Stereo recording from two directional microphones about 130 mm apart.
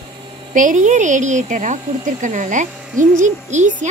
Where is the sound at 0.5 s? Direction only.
75° right (ahead or behind).